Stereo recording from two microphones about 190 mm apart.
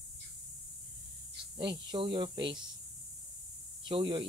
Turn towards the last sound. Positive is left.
turn(degrees=-25)  # may be behind; listen again after turning